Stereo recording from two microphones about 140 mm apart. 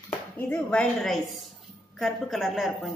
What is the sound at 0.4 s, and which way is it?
A woman's voice, 10° left (ahead or behind).